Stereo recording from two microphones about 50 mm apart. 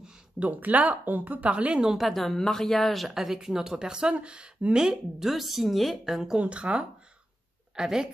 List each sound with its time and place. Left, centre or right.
0.4 s speech: right
1.5 s speech: right
1.9 s a woman's voice: centre
6.3 s speech: right